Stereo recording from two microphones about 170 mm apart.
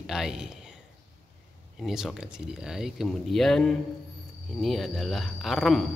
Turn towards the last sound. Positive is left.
turn(degrees=0)  # may be behind; listen again after turning